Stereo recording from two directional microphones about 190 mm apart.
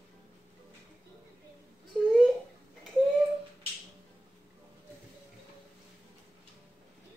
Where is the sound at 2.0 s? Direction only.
5° left (ahead or behind).